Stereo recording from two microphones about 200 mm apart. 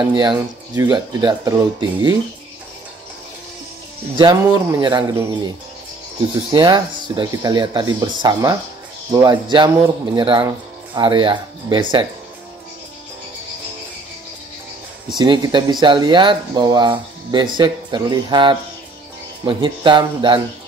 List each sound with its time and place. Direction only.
0.0 s speech: 20° right (ahead or behind)
4.2 s speech: 20° right (ahead or behind)
6.5 s speech: 20° right (ahead or behind)
15.1 s speech: 20° right (ahead or behind)